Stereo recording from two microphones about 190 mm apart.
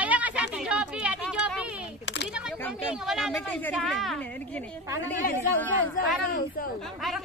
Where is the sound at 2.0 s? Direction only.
65° left (ahead or behind).